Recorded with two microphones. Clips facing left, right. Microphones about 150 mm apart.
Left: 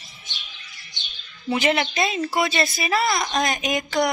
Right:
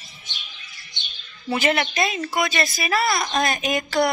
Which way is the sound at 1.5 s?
20° left (ahead or behind).